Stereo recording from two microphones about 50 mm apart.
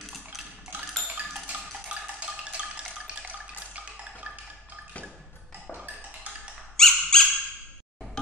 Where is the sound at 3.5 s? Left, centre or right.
Right.